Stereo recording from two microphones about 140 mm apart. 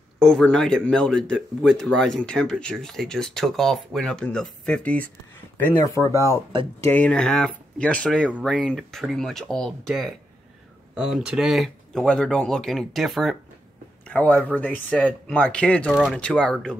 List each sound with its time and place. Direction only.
0.2 s speech: 5° left (ahead or behind); by 6.4 s 20° left (ahead or behind)
6.8 s speech: 10° left (ahead or behind)